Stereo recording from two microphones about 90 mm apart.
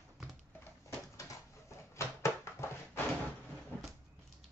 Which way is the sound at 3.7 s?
20° left (ahead or behind).